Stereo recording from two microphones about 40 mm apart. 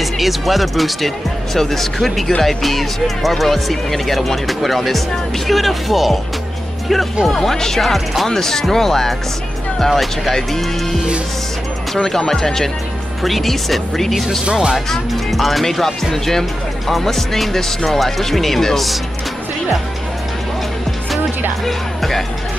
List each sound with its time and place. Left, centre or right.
0.0 s speech: centre
7.3 s speech: centre
14.4 s speech: right
14.9 s speech: centre
21.6 s speech: centre